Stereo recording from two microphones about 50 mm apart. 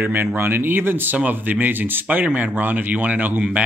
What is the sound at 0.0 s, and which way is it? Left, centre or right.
Speech, right.